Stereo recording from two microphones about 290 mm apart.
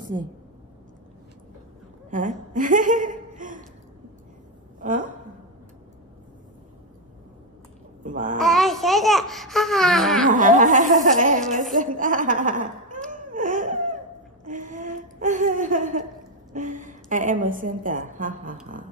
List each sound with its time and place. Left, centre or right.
0.1 s a woman's voice: centre
2.0 s a sound: right
4.7 s a woman's voice: right
8.0 s babbling: right
8.4 s speech: centre
10.2 s speech: right
13.1 s laughter: right
14.4 s a sound: right
16.5 s speech: right